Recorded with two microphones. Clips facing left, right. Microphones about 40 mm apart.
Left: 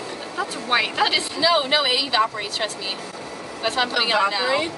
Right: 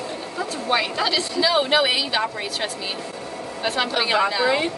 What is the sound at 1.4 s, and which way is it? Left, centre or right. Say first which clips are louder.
A woman's voice: right 1 dB; centre.